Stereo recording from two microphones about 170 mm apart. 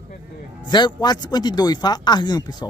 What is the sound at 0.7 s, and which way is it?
A man's voice, 25° left (ahead or behind).